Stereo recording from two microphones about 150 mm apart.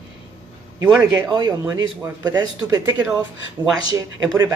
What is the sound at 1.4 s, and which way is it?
Speech, 25° right (ahead or behind).